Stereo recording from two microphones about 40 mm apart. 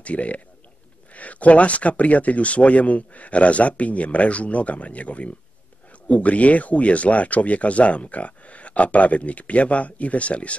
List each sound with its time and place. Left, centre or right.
0.0 s speech: left